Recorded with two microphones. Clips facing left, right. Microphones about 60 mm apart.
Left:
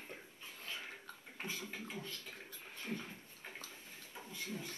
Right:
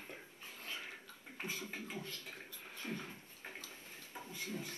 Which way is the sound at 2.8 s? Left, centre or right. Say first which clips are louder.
Even; right.